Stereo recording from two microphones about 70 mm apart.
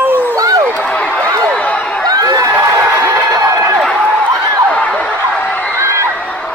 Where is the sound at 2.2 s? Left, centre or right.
Right.